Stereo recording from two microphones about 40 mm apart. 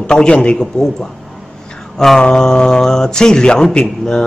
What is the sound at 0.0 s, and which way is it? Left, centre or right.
Speech, left.